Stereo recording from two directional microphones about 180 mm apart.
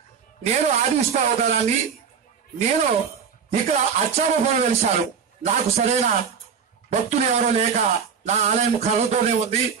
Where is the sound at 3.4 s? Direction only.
35° right (ahead or behind).